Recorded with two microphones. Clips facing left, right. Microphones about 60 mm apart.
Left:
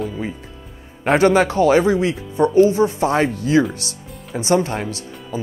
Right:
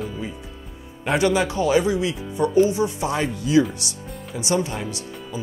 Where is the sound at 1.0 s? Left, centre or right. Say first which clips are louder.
Left 6 dB; left.